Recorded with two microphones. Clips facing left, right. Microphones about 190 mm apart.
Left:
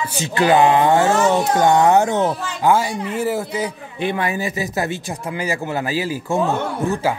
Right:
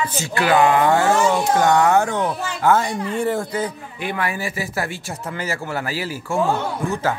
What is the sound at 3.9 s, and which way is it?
Speech, 25° left (ahead or behind).